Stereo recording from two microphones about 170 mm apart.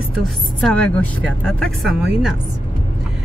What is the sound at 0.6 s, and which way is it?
Speech, 5° left (ahead or behind).